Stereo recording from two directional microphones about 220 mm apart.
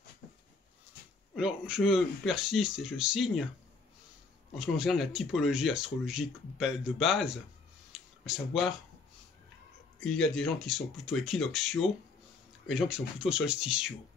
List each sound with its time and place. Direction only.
0.2 s a sound: 40° left (ahead or behind)
1.3 s speech: 5° right (ahead or behind)
4.6 s speech: centre (ahead or behind)
9.9 s speech: centre (ahead or behind)